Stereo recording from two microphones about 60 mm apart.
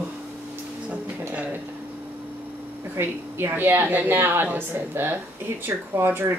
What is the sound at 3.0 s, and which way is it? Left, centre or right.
A woman's voice, right.